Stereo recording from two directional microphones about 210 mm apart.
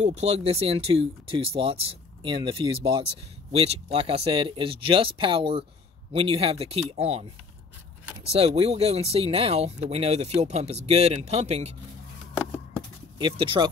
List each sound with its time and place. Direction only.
0.0 s speech: 30° right (ahead or behind)
13.2 s speech: 25° right (ahead or behind)